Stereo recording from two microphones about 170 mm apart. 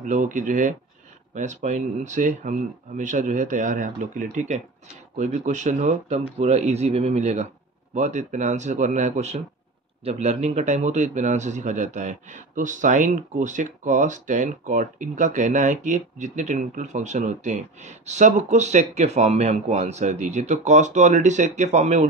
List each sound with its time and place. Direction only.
0.0 s a man's voice: 50° right (ahead or behind)